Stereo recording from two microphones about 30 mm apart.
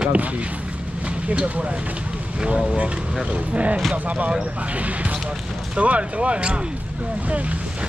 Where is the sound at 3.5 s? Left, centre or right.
Right.